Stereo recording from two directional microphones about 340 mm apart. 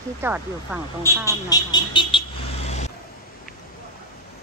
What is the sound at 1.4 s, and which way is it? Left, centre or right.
Vehicle, centre.